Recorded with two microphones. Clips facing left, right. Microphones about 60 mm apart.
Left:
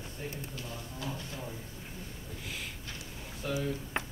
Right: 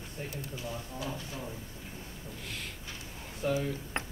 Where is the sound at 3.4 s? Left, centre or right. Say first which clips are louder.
Right 4 dB; right.